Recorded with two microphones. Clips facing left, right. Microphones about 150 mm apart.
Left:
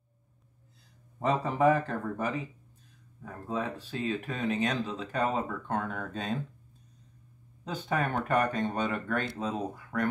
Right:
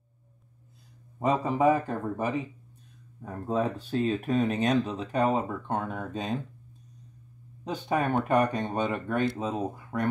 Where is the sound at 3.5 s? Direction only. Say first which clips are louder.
Right 6 dB; 35° right (ahead or behind).